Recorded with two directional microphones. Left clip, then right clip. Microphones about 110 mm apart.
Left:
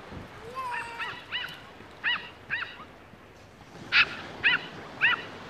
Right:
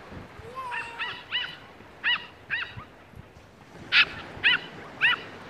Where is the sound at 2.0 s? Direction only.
35° right (ahead or behind).